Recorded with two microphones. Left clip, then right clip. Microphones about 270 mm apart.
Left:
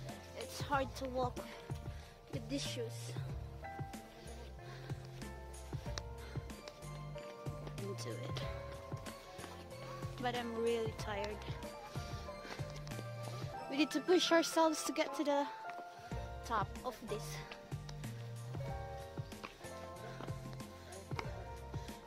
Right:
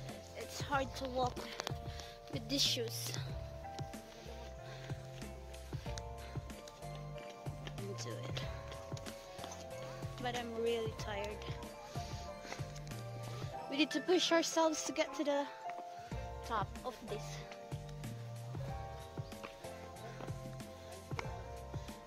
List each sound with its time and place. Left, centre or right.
0.6 s speech: centre
2.5 s speech: centre
7.9 s speech: centre
10.2 s speech: centre
11.4 s music: centre
13.7 s speech: centre